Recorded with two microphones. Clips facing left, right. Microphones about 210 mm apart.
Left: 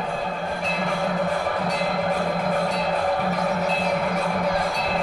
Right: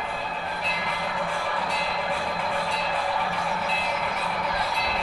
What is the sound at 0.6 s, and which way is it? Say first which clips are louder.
Music: left 9 dB; 45° left (ahead or behind).